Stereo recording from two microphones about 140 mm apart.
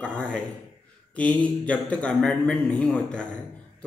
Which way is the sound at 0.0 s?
5° left (ahead or behind).